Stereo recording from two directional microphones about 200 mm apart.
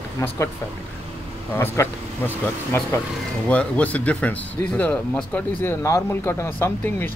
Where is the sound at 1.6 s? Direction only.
10° left (ahead or behind).